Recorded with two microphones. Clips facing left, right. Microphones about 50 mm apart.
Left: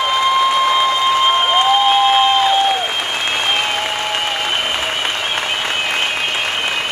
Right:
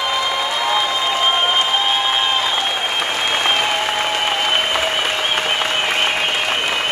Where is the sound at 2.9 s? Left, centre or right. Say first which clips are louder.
Even; centre.